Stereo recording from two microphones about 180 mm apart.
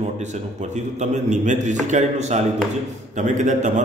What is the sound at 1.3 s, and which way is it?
A man's voice, 40° right (ahead or behind).